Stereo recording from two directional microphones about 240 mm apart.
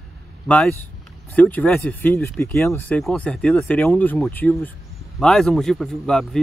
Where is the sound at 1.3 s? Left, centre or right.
Centre.